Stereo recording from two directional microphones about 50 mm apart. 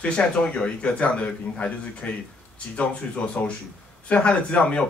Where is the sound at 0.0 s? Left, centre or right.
Left.